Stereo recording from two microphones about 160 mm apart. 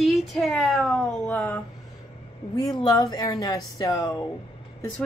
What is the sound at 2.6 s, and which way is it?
Speech, 25° left (ahead or behind).